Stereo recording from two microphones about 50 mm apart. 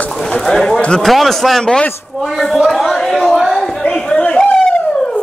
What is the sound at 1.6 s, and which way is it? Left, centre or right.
Speech, centre.